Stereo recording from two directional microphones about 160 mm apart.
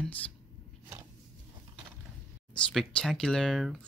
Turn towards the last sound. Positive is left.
turn(degrees=0)  # may be behind; listen again after turning